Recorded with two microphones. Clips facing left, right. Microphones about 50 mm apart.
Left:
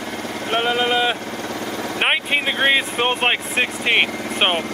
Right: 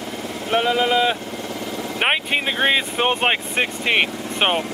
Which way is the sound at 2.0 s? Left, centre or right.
Centre.